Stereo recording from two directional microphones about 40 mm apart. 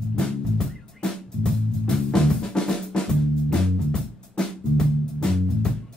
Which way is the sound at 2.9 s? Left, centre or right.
Left.